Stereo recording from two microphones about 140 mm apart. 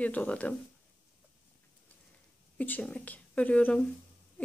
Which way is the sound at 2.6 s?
10° left (ahead or behind).